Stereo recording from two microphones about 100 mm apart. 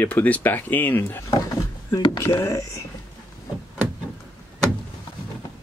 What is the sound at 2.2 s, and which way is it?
Speech, 30° left (ahead or behind).